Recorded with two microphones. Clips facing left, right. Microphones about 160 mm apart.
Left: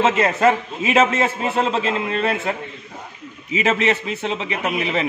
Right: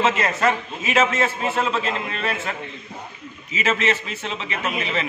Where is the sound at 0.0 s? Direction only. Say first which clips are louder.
Left 4 dB; 30° left (ahead or behind).